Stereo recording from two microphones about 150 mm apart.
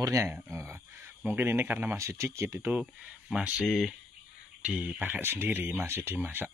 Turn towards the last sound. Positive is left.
turn(degrees=-15)  # may be behind; listen again after turning